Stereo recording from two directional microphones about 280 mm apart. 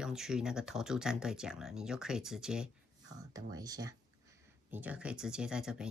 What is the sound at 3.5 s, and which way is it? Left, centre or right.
Speech, centre.